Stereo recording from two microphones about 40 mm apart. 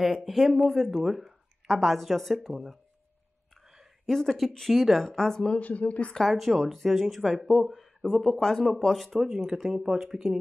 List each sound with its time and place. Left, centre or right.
0.0 s speech: centre
4.0 s speech: centre
5.0 s a woman's voice: centre
5.6 s speech: left
6.2 s speech: centre
9.8 s speech: centre
10.0 s speech: centre